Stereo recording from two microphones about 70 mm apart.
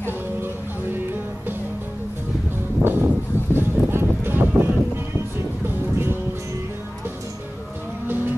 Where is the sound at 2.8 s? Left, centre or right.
Right.